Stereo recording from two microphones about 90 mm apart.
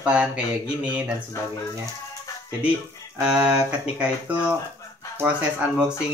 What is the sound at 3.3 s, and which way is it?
Speech, 10° right (ahead or behind).